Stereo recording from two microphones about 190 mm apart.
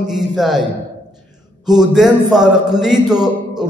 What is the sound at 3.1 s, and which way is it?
Speech, 20° right (ahead or behind).